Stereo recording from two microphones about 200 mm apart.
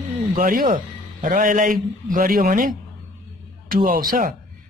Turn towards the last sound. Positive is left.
turn(degrees=-45)  # may be behind; listen again after turning